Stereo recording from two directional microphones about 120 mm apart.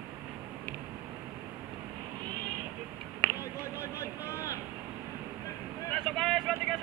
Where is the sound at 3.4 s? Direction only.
25° left (ahead or behind).